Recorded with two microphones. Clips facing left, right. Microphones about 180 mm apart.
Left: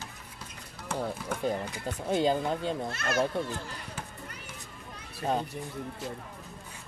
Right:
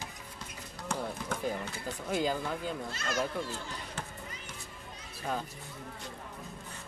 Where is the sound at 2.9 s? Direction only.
60° left (ahead or behind).